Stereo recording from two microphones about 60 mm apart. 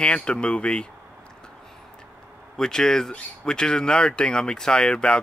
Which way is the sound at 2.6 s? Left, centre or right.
Centre.